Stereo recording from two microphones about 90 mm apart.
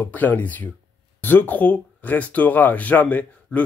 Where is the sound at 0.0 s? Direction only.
20° left (ahead or behind).